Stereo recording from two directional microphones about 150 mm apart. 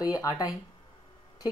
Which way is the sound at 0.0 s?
20° left (ahead or behind).